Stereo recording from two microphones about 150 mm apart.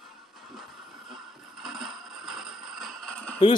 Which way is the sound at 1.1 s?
Centre (ahead or behind).